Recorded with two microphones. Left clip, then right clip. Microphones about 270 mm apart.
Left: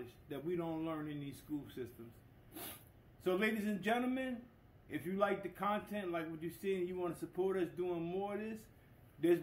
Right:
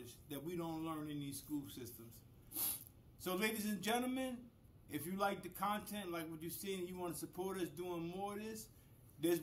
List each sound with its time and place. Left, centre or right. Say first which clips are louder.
0.3 s a man's voice: left 5 dB; right
3.3 s a man's voice: left 4 dB; right